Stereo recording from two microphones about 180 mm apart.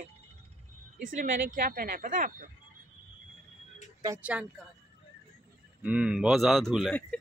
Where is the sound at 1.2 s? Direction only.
45° right (ahead or behind).